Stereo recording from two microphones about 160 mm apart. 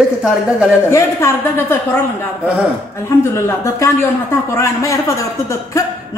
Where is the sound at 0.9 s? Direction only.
15° left (ahead or behind).